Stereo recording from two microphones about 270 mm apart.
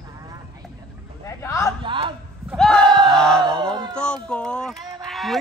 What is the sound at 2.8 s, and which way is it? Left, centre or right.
Battle cry, centre.